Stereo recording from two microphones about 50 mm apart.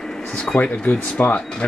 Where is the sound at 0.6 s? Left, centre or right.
Left.